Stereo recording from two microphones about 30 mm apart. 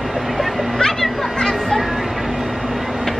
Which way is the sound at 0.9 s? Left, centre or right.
Centre.